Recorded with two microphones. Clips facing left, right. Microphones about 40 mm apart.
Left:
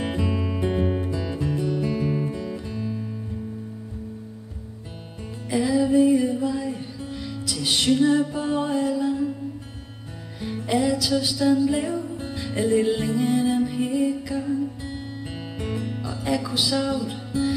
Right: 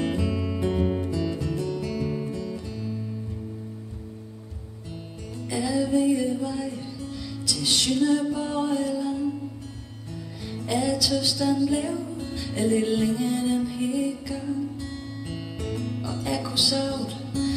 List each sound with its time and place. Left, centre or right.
0.0 s music: centre
5.6 s music: centre
6.5 s music: centre
8.5 s music: centre
10.4 s music: left
12.6 s music: centre
14.2 s music: centre